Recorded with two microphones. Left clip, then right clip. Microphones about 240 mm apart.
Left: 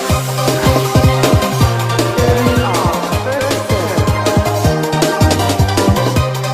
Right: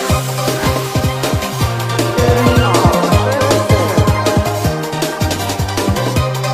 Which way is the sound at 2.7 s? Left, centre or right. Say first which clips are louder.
Right 3 dB; right.